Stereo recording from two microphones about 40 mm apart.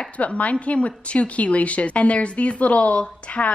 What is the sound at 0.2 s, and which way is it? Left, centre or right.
A woman's voice, left.